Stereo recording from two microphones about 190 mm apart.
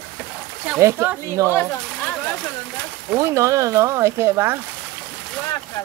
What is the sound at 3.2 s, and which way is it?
Speech, 15° right (ahead or behind).